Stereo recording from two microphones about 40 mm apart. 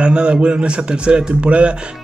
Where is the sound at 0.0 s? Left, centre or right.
Right.